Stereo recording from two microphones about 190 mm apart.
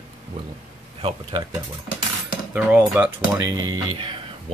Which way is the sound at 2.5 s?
5° right (ahead or behind).